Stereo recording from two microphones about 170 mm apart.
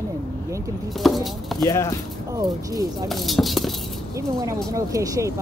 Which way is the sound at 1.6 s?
20° left (ahead or behind).